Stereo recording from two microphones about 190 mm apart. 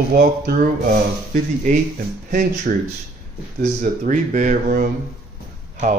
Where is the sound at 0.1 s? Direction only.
50° right (ahead or behind).